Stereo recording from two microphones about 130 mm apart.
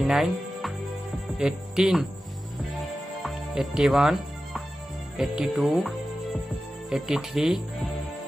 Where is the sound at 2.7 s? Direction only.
Centre (ahead or behind).